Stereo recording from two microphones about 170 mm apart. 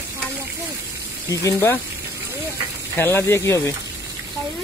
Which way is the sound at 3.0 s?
15° left (ahead or behind).